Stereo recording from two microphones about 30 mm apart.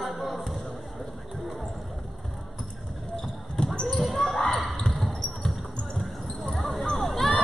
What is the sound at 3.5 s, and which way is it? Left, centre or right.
Basketball bounce, left.